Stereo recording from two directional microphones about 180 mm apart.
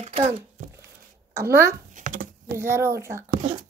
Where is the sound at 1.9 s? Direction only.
45° right (ahead or behind).